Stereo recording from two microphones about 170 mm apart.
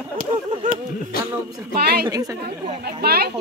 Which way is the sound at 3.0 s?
65° right (ahead or behind).